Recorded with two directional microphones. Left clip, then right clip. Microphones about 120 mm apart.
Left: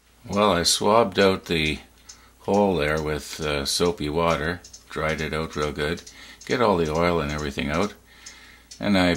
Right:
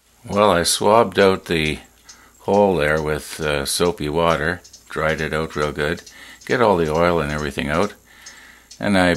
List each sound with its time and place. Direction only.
0.3 s speech: 30° right (ahead or behind)